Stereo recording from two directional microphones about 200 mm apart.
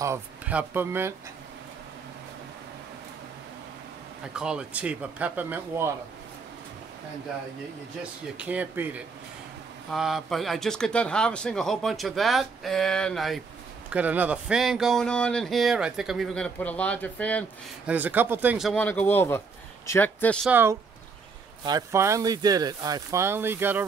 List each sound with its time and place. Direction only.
0.0 s speech: 10° right (ahead or behind)
4.4 s speech: 5° right (ahead or behind)
8.4 s speech: 5° right (ahead or behind)
17.8 s speech: 10° right (ahead or behind); by 20.3 s 10° left (ahead or behind)
20.4 s speech: 10° right (ahead or behind)